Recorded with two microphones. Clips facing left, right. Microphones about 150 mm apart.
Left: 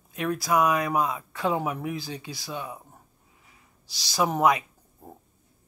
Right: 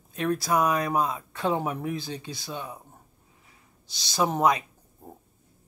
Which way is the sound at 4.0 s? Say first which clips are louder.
Left 1 dB; 25° right (ahead or behind).